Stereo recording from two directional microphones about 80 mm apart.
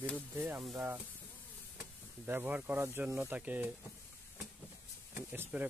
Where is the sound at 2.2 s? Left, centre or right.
Right.